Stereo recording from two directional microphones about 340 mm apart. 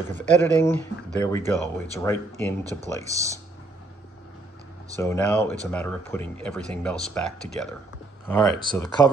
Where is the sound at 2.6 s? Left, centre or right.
Centre.